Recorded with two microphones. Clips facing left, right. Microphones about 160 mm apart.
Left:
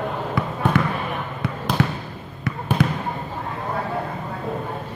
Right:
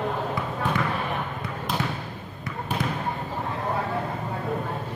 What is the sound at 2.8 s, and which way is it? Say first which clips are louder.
Basketball bounce: left 8 dB; 70° left (ahead or behind).